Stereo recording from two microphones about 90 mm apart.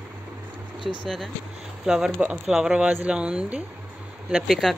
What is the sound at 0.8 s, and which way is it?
Speech, centre (ahead or behind).